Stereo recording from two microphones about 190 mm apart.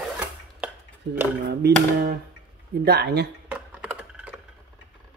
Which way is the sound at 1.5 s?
60° right (ahead or behind).